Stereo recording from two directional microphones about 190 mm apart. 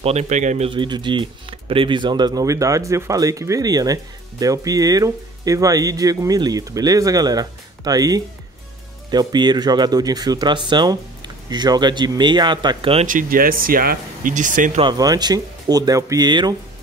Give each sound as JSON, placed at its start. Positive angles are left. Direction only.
{"t": 0.0, "sound": "speech", "side_deg": -35}
{"t": 0.7, "sound": "speech", "side_deg": -25}
{"t": 13.0, "sound": "speech", "side_deg": -45}
{"t": 14.8, "sound": "speech", "side_deg": -20}